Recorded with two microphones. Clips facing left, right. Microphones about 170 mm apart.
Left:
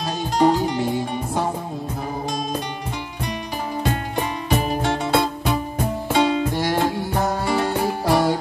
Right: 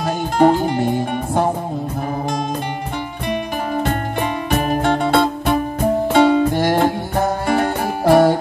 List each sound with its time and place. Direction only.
0.0 s music: 55° right (ahead or behind)
4.5 s music: 55° right (ahead or behind)